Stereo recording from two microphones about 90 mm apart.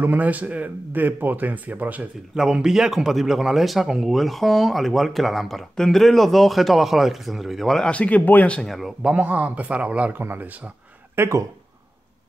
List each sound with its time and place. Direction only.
0.0 s speech: 20° right (ahead or behind)
2.3 s speech: 5° right (ahead or behind)
7.9 s speech: 15° left (ahead or behind)
8.6 s a man's voice: 5° right (ahead or behind); by 10.7 s 20° right (ahead or behind)
11.1 s speech: 35° right (ahead or behind)